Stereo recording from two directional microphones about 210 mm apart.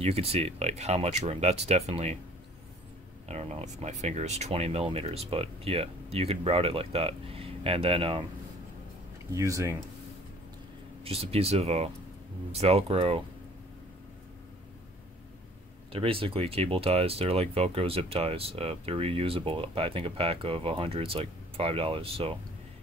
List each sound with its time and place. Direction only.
0.0 s speech: 30° right (ahead or behind)
3.3 s speech: 30° right (ahead or behind)
9.3 s speech: 15° right (ahead or behind)
11.1 s speech: 30° right (ahead or behind)
15.9 s speech: 25° right (ahead or behind)